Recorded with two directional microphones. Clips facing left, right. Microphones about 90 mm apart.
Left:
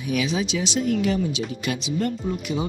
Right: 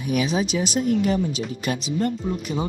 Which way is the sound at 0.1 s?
40° right (ahead or behind).